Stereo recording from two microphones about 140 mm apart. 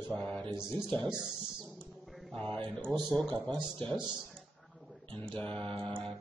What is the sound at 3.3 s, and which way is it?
Speech, 35° right (ahead or behind).